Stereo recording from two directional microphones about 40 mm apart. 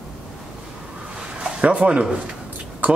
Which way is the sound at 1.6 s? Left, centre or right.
Right.